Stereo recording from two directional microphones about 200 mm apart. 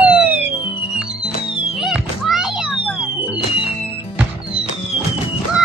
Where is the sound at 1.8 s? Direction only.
Centre (ahead or behind).